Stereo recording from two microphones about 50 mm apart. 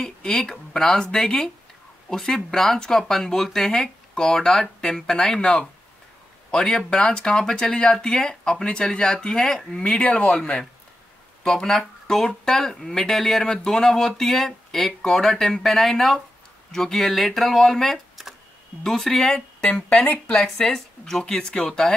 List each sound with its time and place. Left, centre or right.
0.0 s speech: centre
19.6 s speech: left
20.4 s speech: centre